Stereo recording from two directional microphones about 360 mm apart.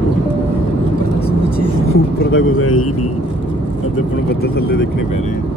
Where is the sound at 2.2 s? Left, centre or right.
Left.